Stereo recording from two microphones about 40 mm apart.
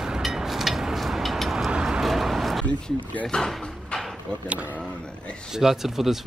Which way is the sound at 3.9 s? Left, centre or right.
Left.